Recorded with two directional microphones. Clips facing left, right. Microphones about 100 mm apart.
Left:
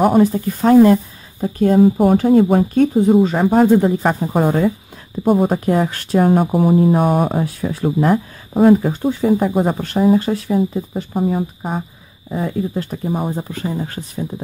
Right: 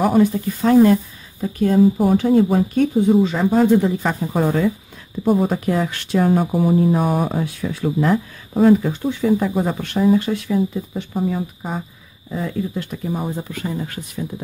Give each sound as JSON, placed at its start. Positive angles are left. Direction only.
{"t": 0.2, "sound": "speech", "side_deg": 40}
{"t": 1.8, "sound": "speech", "side_deg": 55}